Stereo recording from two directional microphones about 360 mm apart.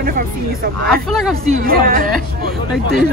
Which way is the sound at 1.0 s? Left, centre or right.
Centre.